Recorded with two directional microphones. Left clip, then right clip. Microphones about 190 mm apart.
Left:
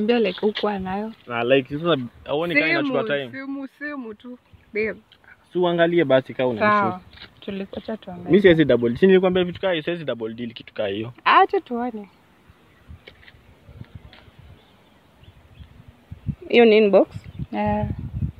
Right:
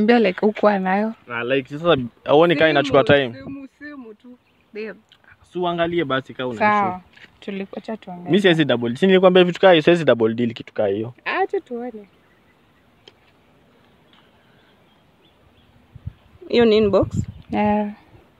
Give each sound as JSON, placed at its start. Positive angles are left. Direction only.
{"t": 0.0, "sound": "speech", "side_deg": -55}
{"t": 1.2, "sound": "speech", "side_deg": 0}
{"t": 2.2, "sound": "speech", "side_deg": -70}
{"t": 3.3, "sound": "a sound", "side_deg": 40}
{"t": 4.7, "sound": "speech", "side_deg": 10}
{"t": 5.5, "sound": "speech", "side_deg": -5}
{"t": 6.6, "sound": "speech", "side_deg": -45}
{"t": 9.2, "sound": "speech", "side_deg": -65}
{"t": 10.7, "sound": "speech", "side_deg": -35}
{"t": 11.2, "sound": "speech", "side_deg": 40}
{"t": 16.4, "sound": "speech", "side_deg": -25}
{"t": 17.5, "sound": "speech", "side_deg": -70}